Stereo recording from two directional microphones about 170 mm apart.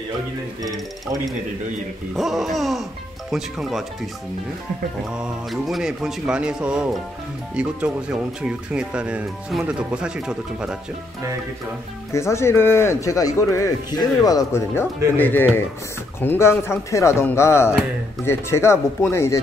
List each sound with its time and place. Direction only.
2.1 s speech: centre (ahead or behind)
5.1 s speech: centre (ahead or behind)
12.1 s speech: 15° left (ahead or behind)